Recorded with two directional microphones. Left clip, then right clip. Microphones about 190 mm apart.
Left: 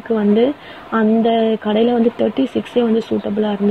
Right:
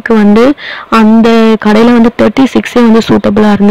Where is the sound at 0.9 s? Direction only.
40° right (ahead or behind).